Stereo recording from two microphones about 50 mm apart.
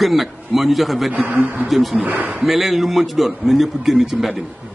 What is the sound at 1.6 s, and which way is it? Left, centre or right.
A man's voice, centre.